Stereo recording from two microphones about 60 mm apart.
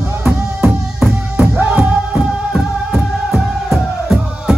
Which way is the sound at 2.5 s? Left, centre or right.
Centre.